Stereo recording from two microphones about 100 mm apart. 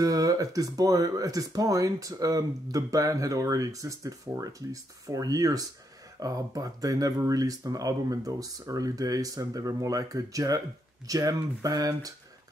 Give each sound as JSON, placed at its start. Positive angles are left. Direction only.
{"t": 0.0, "sound": "speech", "side_deg": -35}